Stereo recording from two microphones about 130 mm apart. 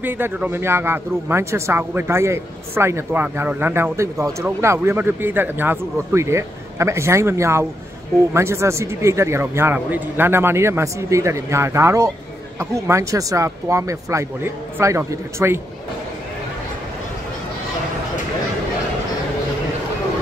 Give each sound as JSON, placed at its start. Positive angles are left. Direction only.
{"t": 0.0, "sound": "a man's voice", "side_deg": -15}